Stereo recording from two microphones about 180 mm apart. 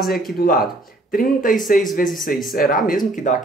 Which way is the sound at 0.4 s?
55° left (ahead or behind).